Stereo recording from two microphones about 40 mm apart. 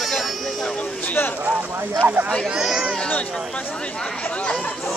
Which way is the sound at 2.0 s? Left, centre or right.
Right.